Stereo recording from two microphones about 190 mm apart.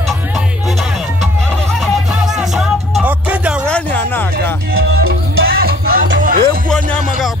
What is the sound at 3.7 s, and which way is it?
Music, 5° left (ahead or behind).